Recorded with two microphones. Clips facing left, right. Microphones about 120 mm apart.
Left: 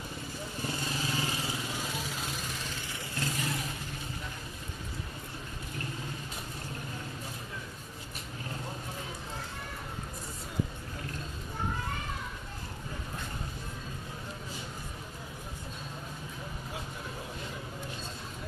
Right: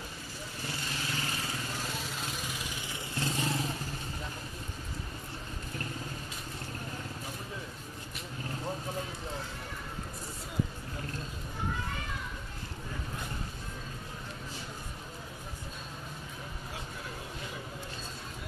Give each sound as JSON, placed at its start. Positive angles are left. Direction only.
{"t": 0.9, "sound": "vehicle", "side_deg": 15}
{"t": 2.9, "sound": "vehicle", "side_deg": -25}